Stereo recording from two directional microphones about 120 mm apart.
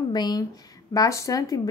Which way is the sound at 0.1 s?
35° left (ahead or behind).